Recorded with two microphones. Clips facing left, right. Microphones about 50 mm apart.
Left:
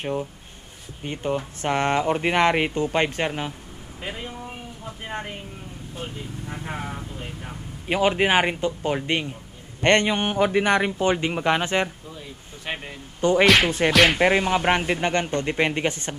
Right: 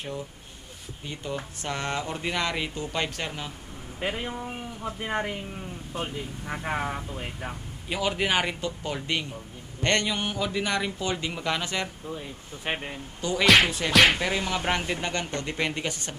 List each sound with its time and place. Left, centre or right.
0.0 s speech: left
6.7 s speech: right
7.9 s a man's voice: left
12.1 s speech: centre
13.2 s a man's voice: left